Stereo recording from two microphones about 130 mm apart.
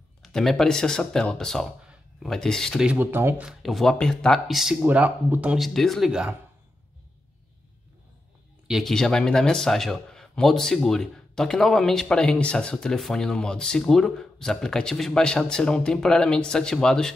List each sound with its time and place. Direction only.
0.2 s a man's voice: centre (ahead or behind)
3.0 s speech: 15° right (ahead or behind)
3.4 s a man's voice: centre (ahead or behind)
4.8 s speech: 15° right (ahead or behind)
5.6 s a man's voice: centre (ahead or behind)
8.6 s a man's voice: centre (ahead or behind)